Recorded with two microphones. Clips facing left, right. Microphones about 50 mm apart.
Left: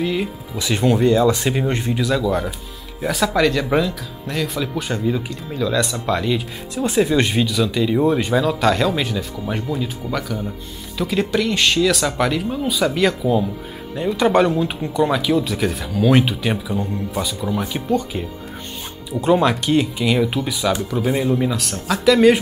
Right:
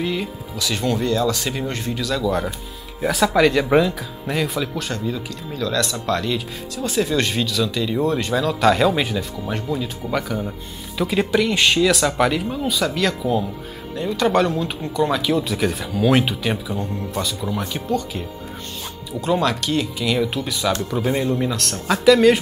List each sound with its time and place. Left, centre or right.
0.0 s speech: centre
0.6 s speech: left
2.2 s speech: centre
4.7 s speech: centre
6.7 s speech: left; by 9.2 s centre
9.5 s speech: centre
10.0 s speech: centre
13.9 s speech: centre
17.8 s speech: centre
19.2 s speech: centre